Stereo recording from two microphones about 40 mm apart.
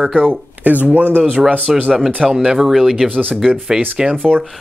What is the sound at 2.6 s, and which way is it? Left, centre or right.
Speech, centre.